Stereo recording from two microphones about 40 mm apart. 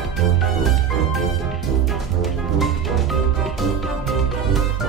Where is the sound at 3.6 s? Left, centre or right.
Centre.